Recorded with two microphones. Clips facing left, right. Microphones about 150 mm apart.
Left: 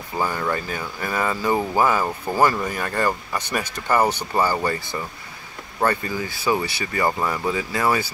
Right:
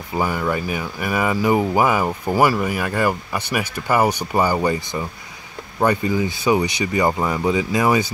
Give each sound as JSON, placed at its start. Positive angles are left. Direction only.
{"t": 0.2, "sound": "speech", "side_deg": -10}